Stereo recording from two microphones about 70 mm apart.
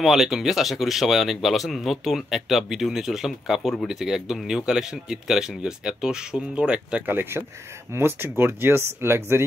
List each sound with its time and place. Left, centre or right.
0.0 s speech: centre
7.1 s speech: right